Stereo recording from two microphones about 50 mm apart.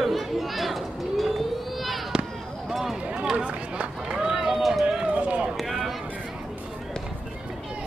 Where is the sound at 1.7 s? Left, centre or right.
Centre.